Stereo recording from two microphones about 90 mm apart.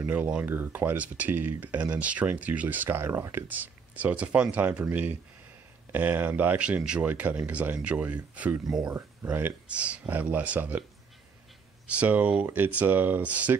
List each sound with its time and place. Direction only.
0.1 s speech: 15° right (ahead or behind)
8.6 s speech: 5° right (ahead or behind)
8.9 s speech: 25° right (ahead or behind)
11.9 s speech: 15° right (ahead or behind)